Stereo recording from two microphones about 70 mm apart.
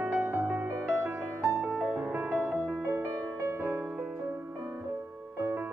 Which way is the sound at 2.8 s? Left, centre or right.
Right.